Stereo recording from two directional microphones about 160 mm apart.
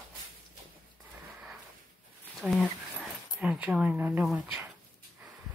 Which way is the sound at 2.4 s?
5° left (ahead or behind).